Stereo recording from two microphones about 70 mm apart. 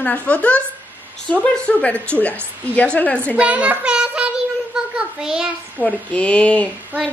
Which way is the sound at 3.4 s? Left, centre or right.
Centre.